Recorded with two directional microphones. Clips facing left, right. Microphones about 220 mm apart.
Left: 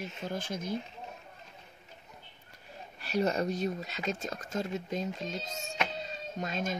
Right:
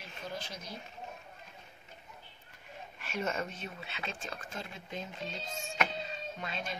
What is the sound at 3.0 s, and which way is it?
Speech, 35° left (ahead or behind).